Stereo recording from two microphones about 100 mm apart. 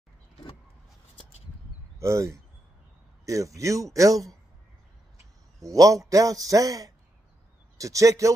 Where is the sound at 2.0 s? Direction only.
30° right (ahead or behind).